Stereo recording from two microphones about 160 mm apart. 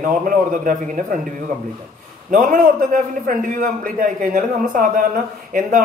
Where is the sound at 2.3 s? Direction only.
55° right (ahead or behind).